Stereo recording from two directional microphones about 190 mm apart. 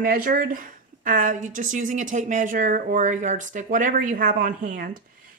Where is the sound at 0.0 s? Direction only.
50° right (ahead or behind).